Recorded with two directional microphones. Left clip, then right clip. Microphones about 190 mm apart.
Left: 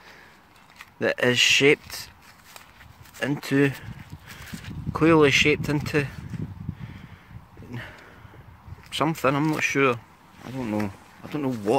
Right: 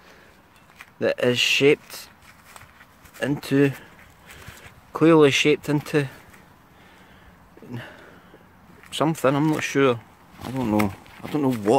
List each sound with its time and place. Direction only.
0.7 s speech: centre (ahead or behind)
3.2 s speech: 5° right (ahead or behind)
4.9 s speech: 5° right (ahead or behind)
7.7 s a sound: 10° right (ahead or behind)
8.9 s speech: 10° right (ahead or behind)